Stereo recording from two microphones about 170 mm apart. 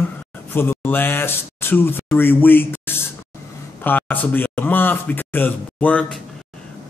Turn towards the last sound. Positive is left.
turn(degrees=10)  # may be behind; listen again after turning